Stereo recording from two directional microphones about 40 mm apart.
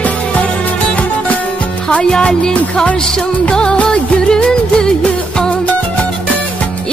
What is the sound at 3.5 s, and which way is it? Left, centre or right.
Music, left.